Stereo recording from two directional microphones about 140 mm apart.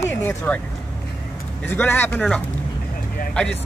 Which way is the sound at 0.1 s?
20° left (ahead or behind).